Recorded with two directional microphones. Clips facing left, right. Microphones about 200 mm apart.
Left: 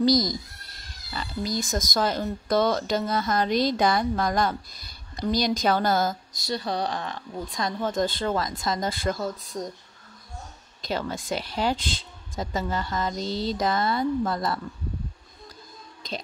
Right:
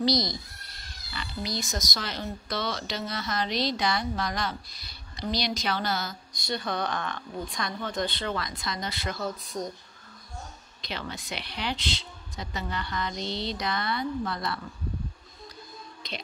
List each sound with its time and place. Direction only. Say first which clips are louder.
0.0 s speech: left 5 dB; 45° left (ahead or behind)
10.8 s speech: left 8 dB; 45° left (ahead or behind)